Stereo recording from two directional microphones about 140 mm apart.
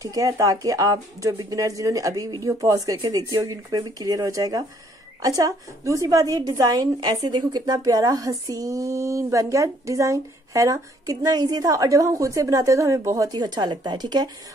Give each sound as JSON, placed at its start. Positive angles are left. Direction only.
{"t": 0.0, "sound": "a woman's voice", "side_deg": -25}